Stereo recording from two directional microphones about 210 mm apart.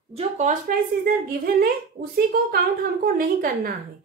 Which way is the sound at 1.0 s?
45° right (ahead or behind).